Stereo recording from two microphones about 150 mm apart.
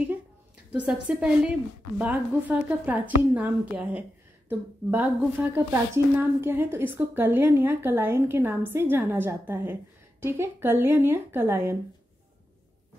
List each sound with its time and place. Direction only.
0.7 s a woman's voice: 10° right (ahead or behind)